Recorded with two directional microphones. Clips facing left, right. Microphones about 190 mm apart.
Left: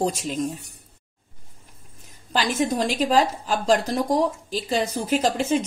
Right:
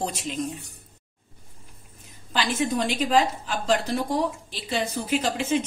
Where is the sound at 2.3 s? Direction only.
40° left (ahead or behind).